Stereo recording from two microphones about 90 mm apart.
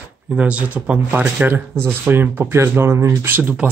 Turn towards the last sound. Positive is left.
turn(degrees=-25)  # may be behind; listen again after turning